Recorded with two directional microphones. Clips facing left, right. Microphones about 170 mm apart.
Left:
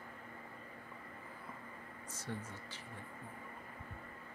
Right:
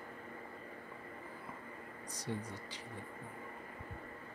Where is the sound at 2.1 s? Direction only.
15° right (ahead or behind).